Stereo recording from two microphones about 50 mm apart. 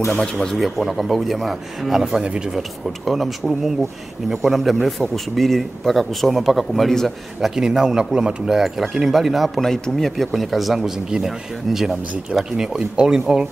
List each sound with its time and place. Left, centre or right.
0.1 s speech: centre
0.6 s speech: centre
7.3 s speech: centre
9.6 s speech: centre